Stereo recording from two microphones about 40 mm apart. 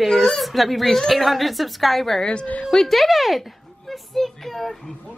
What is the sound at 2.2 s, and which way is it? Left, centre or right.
Speech, left.